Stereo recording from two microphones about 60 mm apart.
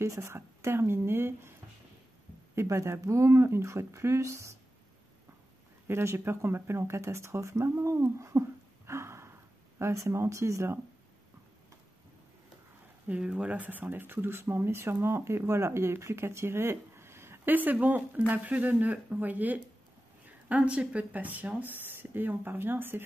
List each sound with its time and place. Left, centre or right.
0.0 s speech: right
2.5 s speech: right
5.9 s speech: right
13.1 s speech: centre; by 17.4 s right
17.5 s speech: right